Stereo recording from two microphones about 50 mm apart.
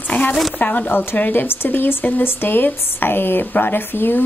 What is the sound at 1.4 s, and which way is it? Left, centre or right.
A woman's voice, left.